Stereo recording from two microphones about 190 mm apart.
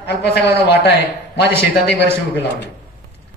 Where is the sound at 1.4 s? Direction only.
60° left (ahead or behind).